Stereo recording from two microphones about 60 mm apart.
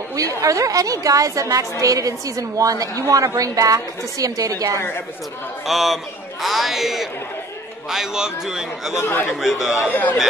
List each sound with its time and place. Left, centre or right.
0.1 s a woman's voice: right
5.7 s a man's voice: centre
8.9 s a man's voice: left
9.4 s a man's voice: centre
9.8 s a man's voice: left